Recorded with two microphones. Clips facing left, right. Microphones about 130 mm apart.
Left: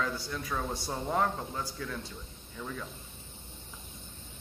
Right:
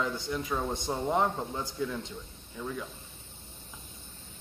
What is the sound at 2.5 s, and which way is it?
Speech, 10° right (ahead or behind).